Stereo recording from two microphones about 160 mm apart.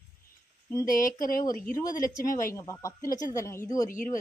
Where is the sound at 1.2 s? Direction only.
60° left (ahead or behind).